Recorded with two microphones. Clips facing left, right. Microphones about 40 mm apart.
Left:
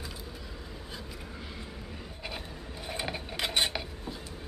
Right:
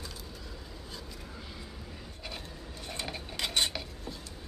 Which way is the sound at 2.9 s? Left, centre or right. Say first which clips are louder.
Left 4 dB; centre.